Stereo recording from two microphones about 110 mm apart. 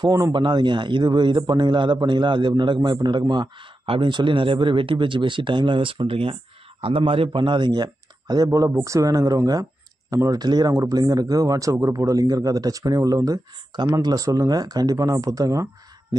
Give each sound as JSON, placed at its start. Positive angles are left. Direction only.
{"t": 0.0, "sound": "a man's voice", "side_deg": -35}